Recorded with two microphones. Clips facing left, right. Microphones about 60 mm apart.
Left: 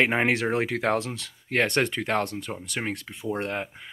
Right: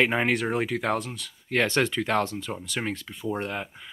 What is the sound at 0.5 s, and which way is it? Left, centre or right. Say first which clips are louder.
Speech: left 2 dB; left.